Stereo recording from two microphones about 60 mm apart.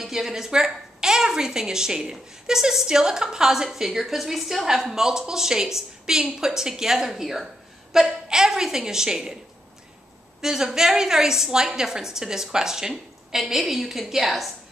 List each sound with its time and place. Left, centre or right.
0.0 s a woman's voice: centre
10.4 s a woman's voice: centre